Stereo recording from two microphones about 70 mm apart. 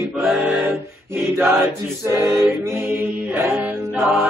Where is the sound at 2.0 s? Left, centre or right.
Right.